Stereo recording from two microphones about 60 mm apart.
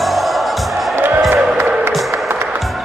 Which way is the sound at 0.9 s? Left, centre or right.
Right.